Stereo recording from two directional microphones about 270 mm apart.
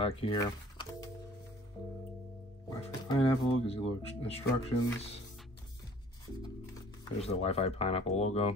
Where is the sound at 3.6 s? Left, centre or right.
Left.